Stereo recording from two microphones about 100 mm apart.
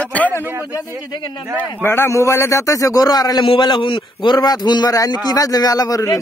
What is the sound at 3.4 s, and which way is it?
A man's voice, 55° left (ahead or behind).